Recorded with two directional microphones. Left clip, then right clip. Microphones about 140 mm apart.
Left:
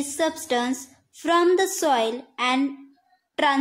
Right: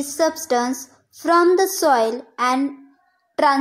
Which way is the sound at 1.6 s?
20° left (ahead or behind).